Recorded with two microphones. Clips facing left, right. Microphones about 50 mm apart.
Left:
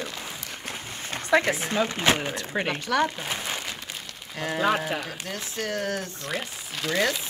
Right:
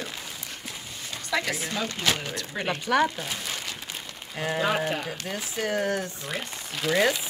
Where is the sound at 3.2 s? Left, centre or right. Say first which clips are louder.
Left 3 dB; left.